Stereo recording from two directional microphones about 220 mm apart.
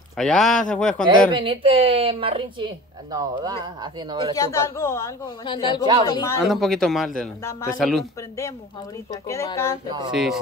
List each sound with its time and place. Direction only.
0.2 s a man's voice: centre (ahead or behind)
1.3 s speech: 25° right (ahead or behind)
4.4 s speech: 10° left (ahead or behind)
6.4 s a man's voice: centre (ahead or behind)
7.2 s speech: 10° left (ahead or behind)
7.8 s a man's voice: centre (ahead or behind)
9.1 s speech: 15° left (ahead or behind)
9.8 s speech: 20° right (ahead or behind)
10.1 s a man's voice: centre (ahead or behind)